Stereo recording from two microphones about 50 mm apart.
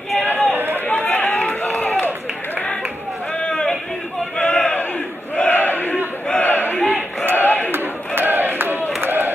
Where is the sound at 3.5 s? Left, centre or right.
Centre.